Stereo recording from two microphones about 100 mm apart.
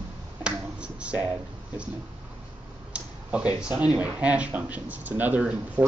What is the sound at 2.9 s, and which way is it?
Speech, 10° right (ahead or behind).